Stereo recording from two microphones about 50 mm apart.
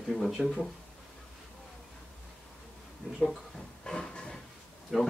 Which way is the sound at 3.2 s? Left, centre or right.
Centre.